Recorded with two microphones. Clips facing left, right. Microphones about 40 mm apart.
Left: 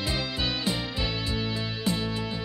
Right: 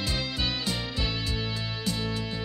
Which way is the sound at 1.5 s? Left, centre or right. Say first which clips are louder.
Left 3 dB; left.